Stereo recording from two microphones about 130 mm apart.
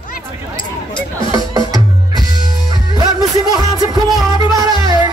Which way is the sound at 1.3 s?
30° right (ahead or behind).